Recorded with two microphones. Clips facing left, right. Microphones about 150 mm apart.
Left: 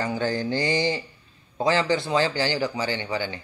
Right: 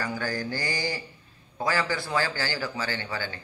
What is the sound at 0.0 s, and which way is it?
A man's voice, 25° left (ahead or behind).